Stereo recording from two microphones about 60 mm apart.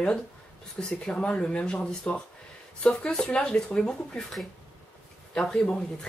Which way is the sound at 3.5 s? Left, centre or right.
Centre.